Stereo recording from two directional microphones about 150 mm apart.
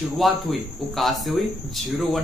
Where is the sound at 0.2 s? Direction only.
Centre (ahead or behind).